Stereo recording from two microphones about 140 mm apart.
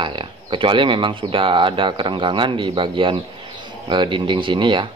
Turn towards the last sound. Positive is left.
turn(degrees=-35)  # may be behind; listen again after turning